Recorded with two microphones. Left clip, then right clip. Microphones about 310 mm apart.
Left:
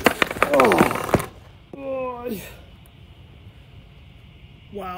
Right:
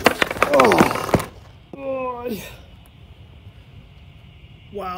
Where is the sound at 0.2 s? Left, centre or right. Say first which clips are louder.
Right 2 dB; centre.